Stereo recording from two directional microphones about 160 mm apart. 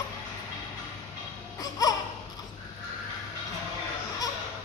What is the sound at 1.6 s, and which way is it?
Baby cry, 25° left (ahead or behind).